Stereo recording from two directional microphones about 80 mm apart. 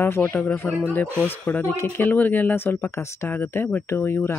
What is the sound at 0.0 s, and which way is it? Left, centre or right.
Speech, left.